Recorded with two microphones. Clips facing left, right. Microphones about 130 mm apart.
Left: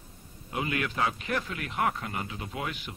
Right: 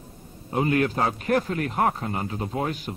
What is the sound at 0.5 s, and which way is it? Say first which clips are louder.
A man's voice: right 9 dB; 35° right (ahead or behind).